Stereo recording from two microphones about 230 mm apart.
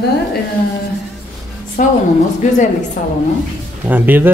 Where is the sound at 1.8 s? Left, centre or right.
Left.